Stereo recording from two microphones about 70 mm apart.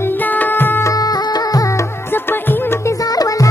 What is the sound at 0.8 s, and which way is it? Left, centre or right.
Music, left.